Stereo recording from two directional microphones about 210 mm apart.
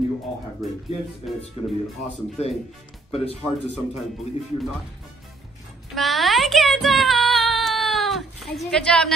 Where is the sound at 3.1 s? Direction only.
30° left (ahead or behind).